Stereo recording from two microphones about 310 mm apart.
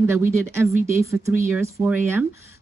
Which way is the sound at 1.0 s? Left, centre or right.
Centre.